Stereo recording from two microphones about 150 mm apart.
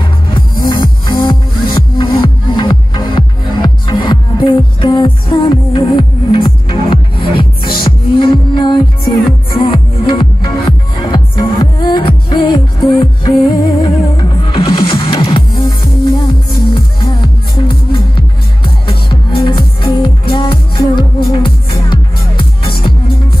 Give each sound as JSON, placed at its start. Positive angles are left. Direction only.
{"t": 0.7, "sound": "music", "side_deg": 30}